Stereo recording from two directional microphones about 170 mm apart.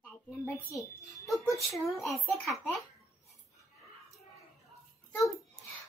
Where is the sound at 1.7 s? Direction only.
Centre (ahead or behind).